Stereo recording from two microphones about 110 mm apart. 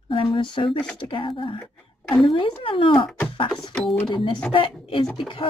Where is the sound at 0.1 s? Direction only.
50° left (ahead or behind).